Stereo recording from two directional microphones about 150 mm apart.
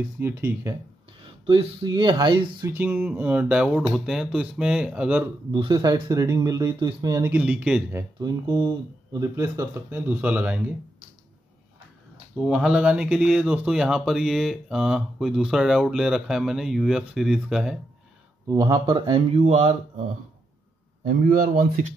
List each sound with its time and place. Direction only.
0.2 s speech: 15° right (ahead or behind)
1.2 s speech: 35° right (ahead or behind)
2.7 s speech: 15° right (ahead or behind)
5.5 s speech: 30° right (ahead or behind)
7.3 s speech: 10° right (ahead or behind)
8.2 s speech: 30° right (ahead or behind); by 10.6 s 10° right (ahead or behind)
12.4 s speech: 5° right (ahead or behind)
18.5 s speech: 25° right (ahead or behind)
19.3 s speech: 45° right (ahead or behind)
21.0 s speech: 65° right (ahead or behind)